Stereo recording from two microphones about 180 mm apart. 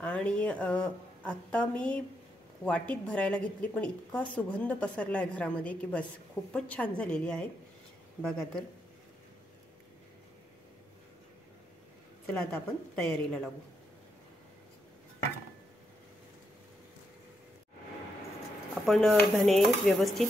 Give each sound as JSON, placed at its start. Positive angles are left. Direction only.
{"t": 0.0, "sound": "a woman's voice", "side_deg": 5}
{"t": 8.2, "sound": "dishes", "side_deg": 5}
{"t": 12.3, "sound": "dishes", "side_deg": 5}
{"t": 18.9, "sound": "dishes", "side_deg": 0}